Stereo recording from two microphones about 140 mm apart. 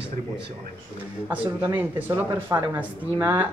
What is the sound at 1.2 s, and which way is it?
Speech, 15° right (ahead or behind).